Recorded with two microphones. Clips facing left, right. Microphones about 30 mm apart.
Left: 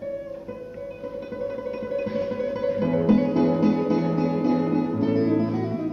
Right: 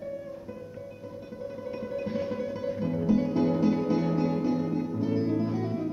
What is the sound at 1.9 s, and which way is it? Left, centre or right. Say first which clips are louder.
Music: left 5 dB; centre.